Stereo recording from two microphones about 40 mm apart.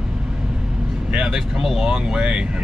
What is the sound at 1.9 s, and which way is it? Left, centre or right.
Speech, right.